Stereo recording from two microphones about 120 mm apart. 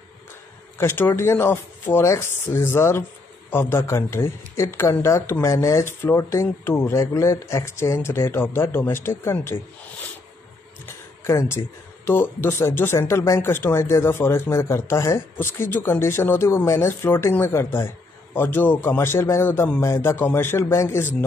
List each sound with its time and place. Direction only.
0.7 s speech: 20° left (ahead or behind)
11.2 s speech: 20° left (ahead or behind)